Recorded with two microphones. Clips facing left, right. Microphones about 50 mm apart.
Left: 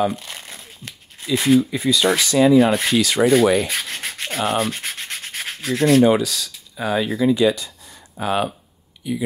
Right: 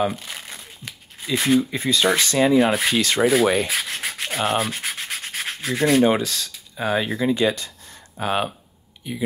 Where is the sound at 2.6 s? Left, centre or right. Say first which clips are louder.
Left 2 dB; centre.